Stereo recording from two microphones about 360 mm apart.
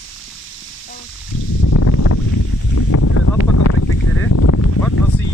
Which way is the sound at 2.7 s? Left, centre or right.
Left.